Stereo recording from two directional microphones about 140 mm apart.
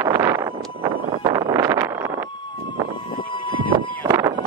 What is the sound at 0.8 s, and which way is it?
Vehicle, 30° right (ahead or behind).